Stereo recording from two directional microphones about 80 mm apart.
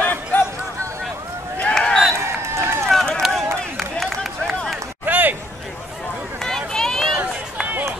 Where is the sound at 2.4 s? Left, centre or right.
Right.